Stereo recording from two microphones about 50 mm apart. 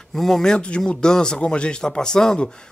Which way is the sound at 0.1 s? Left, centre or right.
Centre.